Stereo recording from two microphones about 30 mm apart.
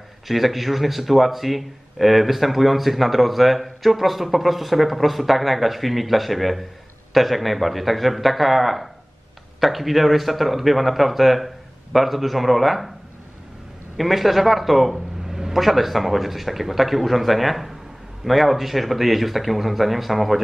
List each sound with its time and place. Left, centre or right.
0.3 s speech: centre
13.9 s speech: centre
15.2 s a sound: centre
15.5 s speech: centre